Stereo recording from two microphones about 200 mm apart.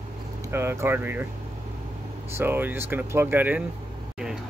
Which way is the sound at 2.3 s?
10° right (ahead or behind).